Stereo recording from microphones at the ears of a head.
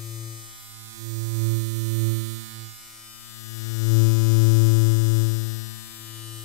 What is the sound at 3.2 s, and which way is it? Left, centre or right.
Synthesizer, left.